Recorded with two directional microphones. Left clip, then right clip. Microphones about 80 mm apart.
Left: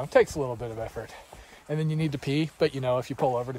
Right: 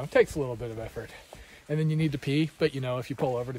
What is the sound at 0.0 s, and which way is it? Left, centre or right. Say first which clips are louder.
Speech: left 2 dB; centre.